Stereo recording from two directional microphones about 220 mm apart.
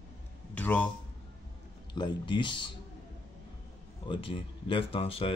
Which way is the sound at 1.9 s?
20° left (ahead or behind).